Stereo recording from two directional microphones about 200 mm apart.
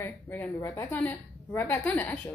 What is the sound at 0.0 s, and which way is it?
A woman's voice, 10° left (ahead or behind).